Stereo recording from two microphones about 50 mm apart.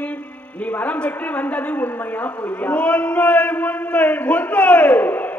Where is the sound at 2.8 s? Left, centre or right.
Left.